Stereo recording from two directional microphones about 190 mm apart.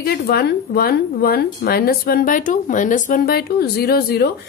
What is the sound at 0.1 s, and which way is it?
A woman's voice, 55° left (ahead or behind).